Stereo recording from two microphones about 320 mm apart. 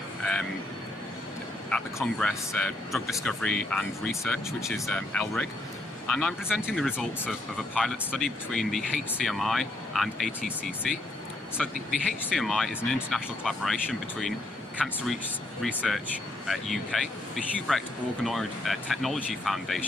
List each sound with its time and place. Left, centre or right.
0.2 s vehicle: centre
1.7 s speech: centre
15.6 s speech: centre